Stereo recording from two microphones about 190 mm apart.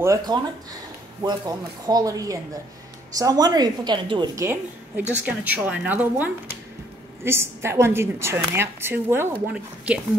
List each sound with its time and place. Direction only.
0.0 s a woman's voice: 20° right (ahead or behind)
5.1 s a woman's voice: 10° right (ahead or behind)